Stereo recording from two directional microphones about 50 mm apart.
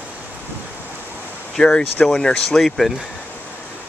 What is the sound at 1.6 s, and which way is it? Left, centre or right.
Speech, centre.